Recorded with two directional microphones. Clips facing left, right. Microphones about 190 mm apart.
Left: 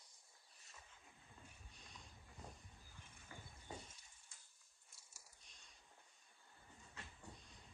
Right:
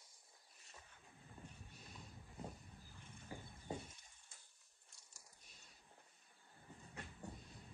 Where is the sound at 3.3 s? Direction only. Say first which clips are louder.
Right 7 dB; 30° right (ahead or behind).